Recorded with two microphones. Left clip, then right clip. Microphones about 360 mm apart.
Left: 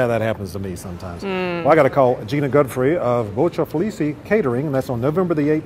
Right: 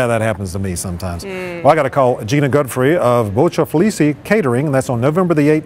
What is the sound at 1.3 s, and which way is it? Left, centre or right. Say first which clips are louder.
Speech: right 2 dB; left.